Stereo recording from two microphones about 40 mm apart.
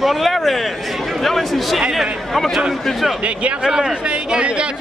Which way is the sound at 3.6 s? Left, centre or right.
Centre.